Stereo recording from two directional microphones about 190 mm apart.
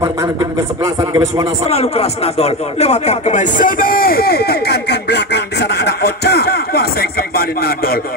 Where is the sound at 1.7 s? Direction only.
35° left (ahead or behind).